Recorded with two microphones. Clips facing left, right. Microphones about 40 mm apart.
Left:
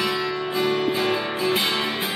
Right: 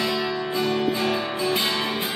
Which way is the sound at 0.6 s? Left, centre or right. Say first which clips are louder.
Left 2 dB; left.